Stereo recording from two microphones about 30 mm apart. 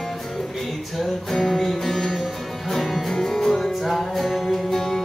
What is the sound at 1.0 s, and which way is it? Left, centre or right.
Music, centre.